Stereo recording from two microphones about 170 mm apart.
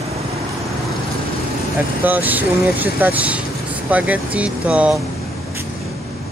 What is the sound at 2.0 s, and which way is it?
Speech, 10° right (ahead or behind).